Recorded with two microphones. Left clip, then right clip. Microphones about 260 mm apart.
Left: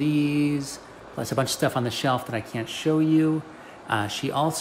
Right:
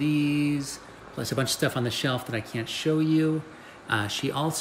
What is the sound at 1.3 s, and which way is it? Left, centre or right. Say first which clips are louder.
Speech: left 3 dB; centre.